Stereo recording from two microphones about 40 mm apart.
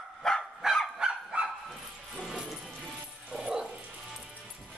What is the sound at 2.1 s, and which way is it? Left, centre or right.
Music, centre.